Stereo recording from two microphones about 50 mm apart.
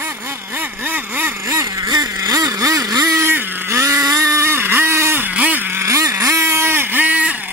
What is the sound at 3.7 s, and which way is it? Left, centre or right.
Vehicle, right.